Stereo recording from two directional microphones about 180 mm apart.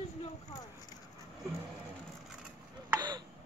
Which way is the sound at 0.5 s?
20° left (ahead or behind).